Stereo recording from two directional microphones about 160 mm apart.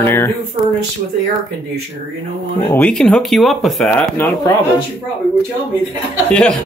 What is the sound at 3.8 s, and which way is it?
Speech, 15° left (ahead or behind).